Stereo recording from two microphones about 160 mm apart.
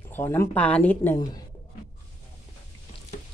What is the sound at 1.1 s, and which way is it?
Speech, 25° left (ahead or behind).